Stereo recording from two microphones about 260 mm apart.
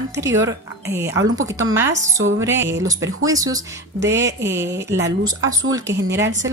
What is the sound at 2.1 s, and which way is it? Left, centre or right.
Speech, right.